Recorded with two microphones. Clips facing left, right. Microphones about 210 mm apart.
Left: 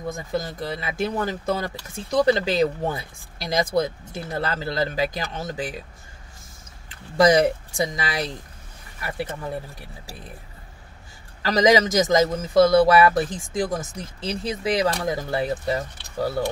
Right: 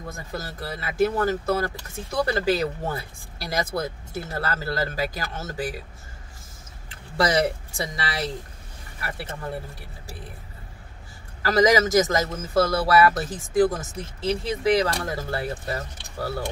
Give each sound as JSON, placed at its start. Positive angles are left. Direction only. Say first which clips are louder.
{"t": 0.1, "sound": "a man's voice", "louder": "left 7 dB", "side_deg": 15}
{"t": 7.2, "sound": "a man's voice", "louder": "left 5 dB", "side_deg": 15}
{"t": 11.4, "sound": "a man's voice", "louder": "left 1 dB", "side_deg": 15}